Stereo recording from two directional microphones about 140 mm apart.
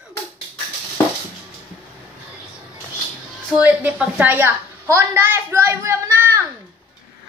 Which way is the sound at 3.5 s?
10° right (ahead or behind).